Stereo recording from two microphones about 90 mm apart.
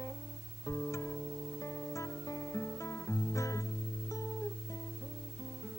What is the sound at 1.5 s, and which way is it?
Music, 35° left (ahead or behind).